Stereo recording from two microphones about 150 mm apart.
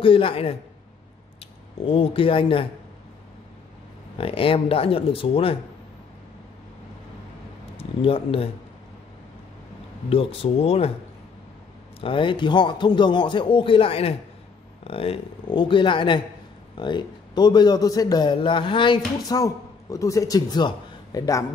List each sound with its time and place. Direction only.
0.0 s speech: 35° left (ahead or behind)
4.2 s speech: 40° left (ahead or behind)
7.7 s speech: 40° left (ahead or behind)
10.0 s speech: 40° left (ahead or behind)
12.0 s a man's voice: 35° left (ahead or behind)